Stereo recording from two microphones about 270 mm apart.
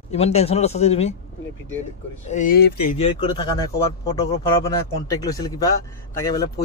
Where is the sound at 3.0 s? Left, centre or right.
Centre.